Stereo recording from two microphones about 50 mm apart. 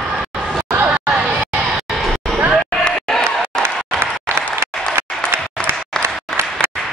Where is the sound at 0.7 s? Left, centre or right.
Right.